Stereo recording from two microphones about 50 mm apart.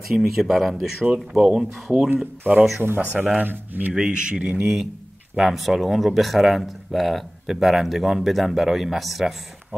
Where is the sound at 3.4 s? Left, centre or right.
Right.